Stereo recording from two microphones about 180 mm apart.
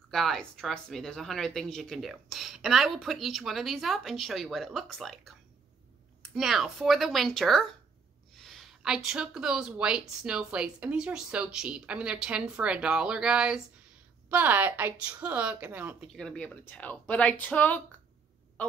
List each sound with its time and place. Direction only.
0.1 s speech: centre (ahead or behind)
6.3 s a woman's voice: centre (ahead or behind)
16.2 s speech: 5° left (ahead or behind)